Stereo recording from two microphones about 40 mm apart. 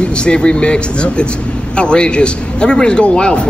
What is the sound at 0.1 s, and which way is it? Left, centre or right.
A man's voice, left.